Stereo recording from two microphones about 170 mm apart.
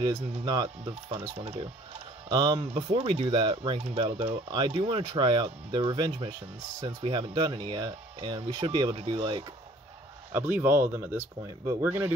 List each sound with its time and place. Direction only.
0.0 s speech: 25° right (ahead or behind)
10.3 s speech: 10° right (ahead or behind)